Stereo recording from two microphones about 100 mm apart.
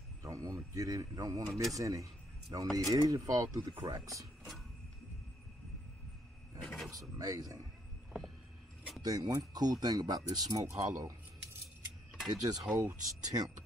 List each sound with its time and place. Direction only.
0.2 s speech: 35° right (ahead or behind)
6.6 s mechanisms: 5° left (ahead or behind)
6.9 s speech: 35° right (ahead or behind)
9.0 s speech: 40° right (ahead or behind)
12.3 s speech: 40° right (ahead or behind)